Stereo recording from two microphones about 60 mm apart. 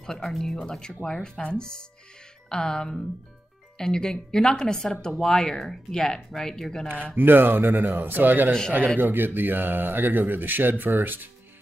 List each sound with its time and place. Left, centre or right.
0.0 s speech: centre
7.2 s a man's voice: right